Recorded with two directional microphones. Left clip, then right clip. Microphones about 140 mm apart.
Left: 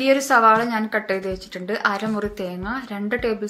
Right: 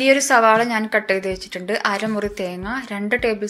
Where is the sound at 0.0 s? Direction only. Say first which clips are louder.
Right 1 dB; 10° right (ahead or behind).